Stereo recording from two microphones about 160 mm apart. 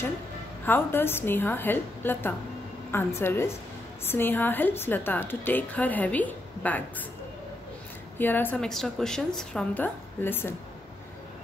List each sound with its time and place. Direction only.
0.7 s a woman's voice: 15° left (ahead or behind)
8.2 s a woman's voice: 10° left (ahead or behind)